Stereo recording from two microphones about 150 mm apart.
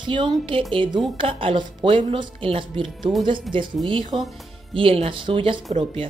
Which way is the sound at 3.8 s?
35° right (ahead or behind).